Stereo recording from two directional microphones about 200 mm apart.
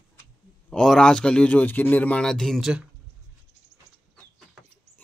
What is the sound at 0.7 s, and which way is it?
Speech, 5° left (ahead or behind).